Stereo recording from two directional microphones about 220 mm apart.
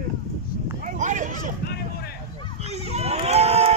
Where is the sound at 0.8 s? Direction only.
35° right (ahead or behind).